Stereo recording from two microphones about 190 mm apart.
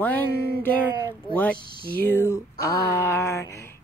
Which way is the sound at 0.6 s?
10° left (ahead or behind).